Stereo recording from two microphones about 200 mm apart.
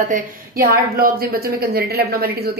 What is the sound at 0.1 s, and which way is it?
Speech, 50° right (ahead or behind).